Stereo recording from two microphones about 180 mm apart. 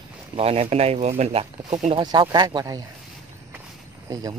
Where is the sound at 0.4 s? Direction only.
35° right (ahead or behind).